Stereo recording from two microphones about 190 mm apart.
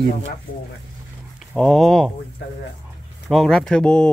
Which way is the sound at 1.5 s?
Centre (ahead or behind).